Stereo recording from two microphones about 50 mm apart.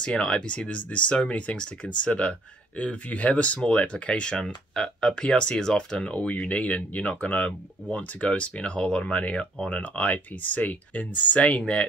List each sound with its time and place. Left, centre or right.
0.0 s speech: left